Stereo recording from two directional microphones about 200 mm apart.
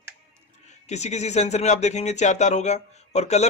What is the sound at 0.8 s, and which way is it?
Speech, 35° left (ahead or behind).